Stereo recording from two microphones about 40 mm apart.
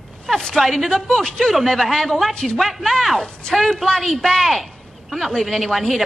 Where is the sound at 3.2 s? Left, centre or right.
Centre.